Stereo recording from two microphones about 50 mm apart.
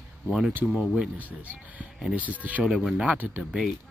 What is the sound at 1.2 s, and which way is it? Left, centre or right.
Speech, right.